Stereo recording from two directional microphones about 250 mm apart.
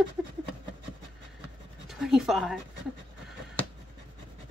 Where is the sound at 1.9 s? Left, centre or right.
Centre.